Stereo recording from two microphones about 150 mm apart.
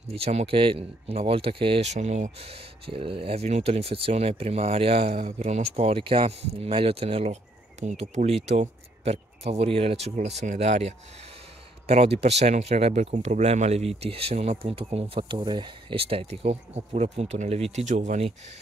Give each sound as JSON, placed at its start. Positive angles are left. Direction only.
{"t": 0.1, "sound": "speech", "side_deg": -45}
{"t": 2.9, "sound": "speech", "side_deg": -35}